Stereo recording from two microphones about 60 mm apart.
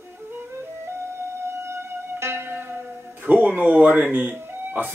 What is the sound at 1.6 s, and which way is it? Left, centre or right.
Music, right.